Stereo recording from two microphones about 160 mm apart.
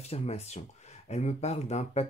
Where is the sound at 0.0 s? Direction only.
40° left (ahead or behind).